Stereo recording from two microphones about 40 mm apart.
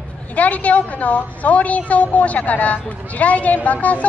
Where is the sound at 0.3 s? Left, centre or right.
Left.